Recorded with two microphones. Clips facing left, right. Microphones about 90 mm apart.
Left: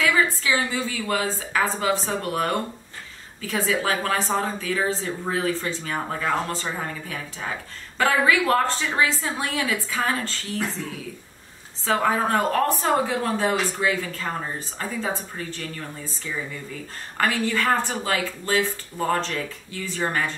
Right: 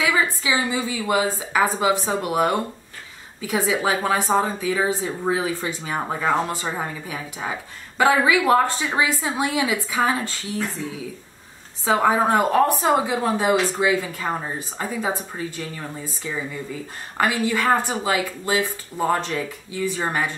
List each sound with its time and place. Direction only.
0.0 s speech: 15° right (ahead or behind)
11.8 s speech: 15° right (ahead or behind)